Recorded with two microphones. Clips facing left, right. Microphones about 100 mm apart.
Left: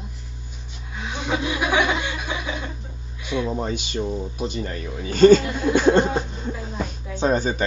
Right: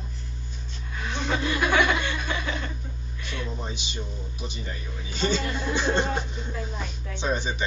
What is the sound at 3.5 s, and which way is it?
Speech, 50° left (ahead or behind).